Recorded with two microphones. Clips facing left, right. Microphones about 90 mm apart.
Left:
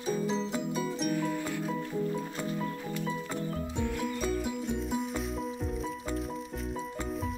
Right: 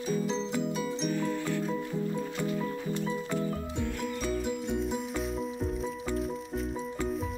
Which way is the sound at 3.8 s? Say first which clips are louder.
Left 3 dB; 5° left (ahead or behind).